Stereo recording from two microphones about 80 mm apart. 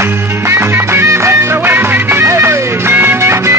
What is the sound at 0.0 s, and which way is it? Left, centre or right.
Music, right.